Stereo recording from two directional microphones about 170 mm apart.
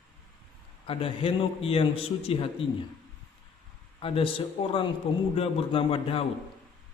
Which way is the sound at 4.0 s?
30° left (ahead or behind).